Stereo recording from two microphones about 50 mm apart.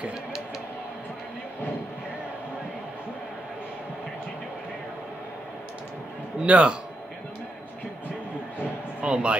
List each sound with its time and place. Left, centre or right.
6.4 s a man's voice: right
9.0 s speech: right